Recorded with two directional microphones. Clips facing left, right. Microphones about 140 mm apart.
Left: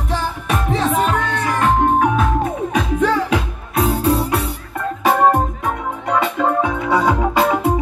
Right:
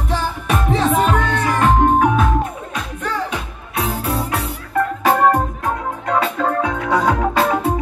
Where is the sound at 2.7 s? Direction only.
90° left.